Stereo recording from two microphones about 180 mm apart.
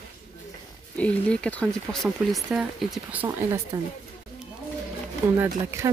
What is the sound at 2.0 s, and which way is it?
Speech, 5° right (ahead or behind).